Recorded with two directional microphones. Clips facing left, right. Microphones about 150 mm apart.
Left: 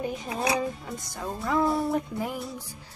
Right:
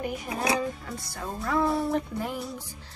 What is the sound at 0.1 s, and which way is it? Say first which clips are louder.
Speech: even; 25° left (ahead or behind).